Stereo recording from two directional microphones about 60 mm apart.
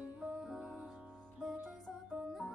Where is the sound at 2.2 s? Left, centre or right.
Centre.